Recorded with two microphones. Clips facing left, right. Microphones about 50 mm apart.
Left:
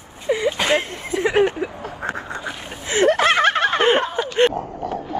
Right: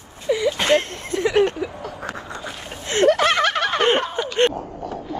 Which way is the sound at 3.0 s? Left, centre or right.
Left.